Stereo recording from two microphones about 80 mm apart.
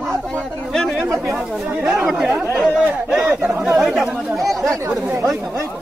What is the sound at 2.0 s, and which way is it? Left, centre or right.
Speech, centre.